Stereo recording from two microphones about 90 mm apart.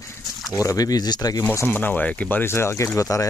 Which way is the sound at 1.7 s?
20° left (ahead or behind).